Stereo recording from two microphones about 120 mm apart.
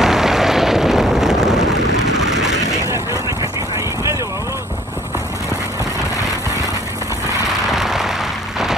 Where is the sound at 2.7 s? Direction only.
25° right (ahead or behind).